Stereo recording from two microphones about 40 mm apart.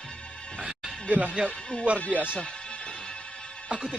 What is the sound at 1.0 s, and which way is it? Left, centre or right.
Speech, right.